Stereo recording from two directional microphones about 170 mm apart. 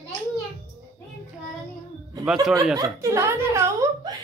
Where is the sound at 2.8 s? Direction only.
15° right (ahead or behind).